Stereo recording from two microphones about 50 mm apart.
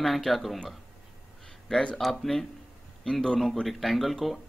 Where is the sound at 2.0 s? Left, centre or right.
Centre.